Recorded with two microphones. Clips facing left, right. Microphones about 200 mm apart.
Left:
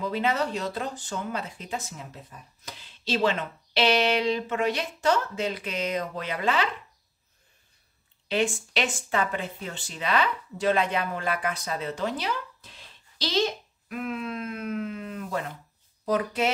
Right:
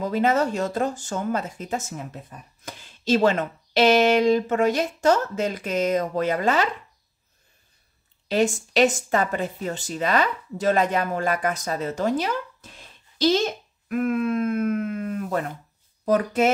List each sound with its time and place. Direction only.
0.0 s speech: 45° right (ahead or behind)
8.3 s speech: 40° right (ahead or behind)